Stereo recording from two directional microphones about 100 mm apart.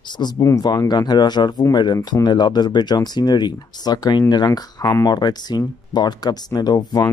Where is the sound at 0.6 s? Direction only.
45° left (ahead or behind).